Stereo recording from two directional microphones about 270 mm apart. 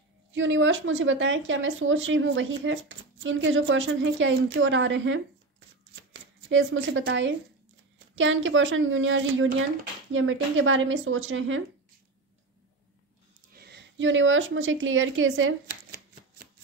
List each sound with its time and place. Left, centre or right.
0.3 s speech: right
6.5 s speech: right
13.6 s a woman's voice: right